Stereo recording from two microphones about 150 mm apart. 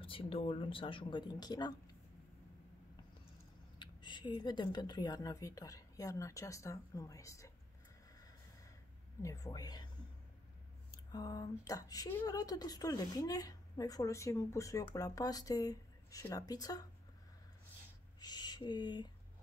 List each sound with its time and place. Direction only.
0.0 s speech: 35° left (ahead or behind)
3.8 s a woman's voice: 30° left (ahead or behind)
9.2 s a woman's voice: 20° left (ahead or behind)
10.9 s a woman's voice: 25° left (ahead or behind)
18.2 s a sound: 30° left (ahead or behind)